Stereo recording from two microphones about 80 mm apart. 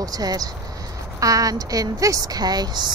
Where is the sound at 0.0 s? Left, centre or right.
Right.